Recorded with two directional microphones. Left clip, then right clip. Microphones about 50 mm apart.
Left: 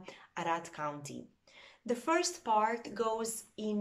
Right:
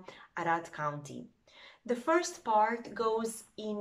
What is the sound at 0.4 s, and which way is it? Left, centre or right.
Speech, left.